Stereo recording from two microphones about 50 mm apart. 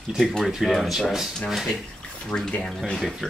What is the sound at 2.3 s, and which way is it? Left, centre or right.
Speech, left.